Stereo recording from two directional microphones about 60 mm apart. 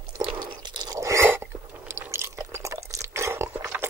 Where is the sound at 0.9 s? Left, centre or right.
Right.